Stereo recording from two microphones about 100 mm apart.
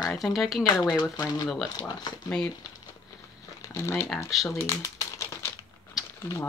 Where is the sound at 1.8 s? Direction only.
45° left (ahead or behind).